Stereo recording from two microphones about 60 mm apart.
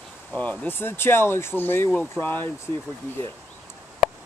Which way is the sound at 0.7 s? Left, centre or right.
Left.